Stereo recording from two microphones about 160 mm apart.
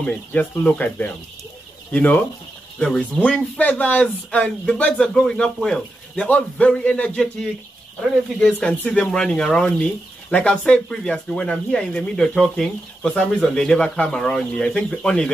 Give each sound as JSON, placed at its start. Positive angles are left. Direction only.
{"t": 0.0, "sound": "speech", "side_deg": 10}
{"t": 3.3, "sound": "speech", "side_deg": 10}
{"t": 8.4, "sound": "speech", "side_deg": 5}